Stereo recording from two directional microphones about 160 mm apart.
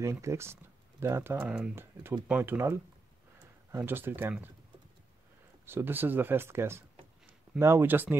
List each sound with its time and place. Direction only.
0.0 s speech: 15° right (ahead or behind)
5.7 s speech: 15° right (ahead or behind)